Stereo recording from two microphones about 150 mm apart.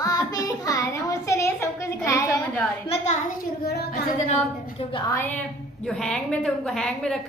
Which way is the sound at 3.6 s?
90° left.